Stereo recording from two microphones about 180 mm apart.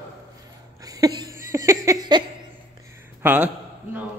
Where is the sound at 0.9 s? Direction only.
20° right (ahead or behind).